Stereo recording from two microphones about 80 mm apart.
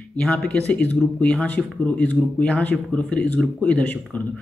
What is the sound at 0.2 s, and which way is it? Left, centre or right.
Speech, centre.